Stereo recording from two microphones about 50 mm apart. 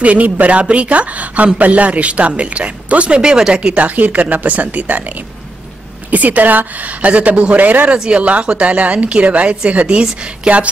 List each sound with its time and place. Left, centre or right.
0.0 s speech: right; by 3.7 s centre
3.7 s a woman's voice: right
6.0 s a woman's voice: right